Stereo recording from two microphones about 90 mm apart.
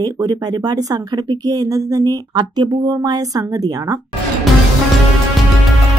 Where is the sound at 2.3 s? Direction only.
55° right (ahead or behind).